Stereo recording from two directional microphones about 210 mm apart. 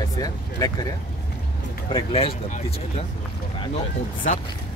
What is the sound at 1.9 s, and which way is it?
Speech, 25° left (ahead or behind).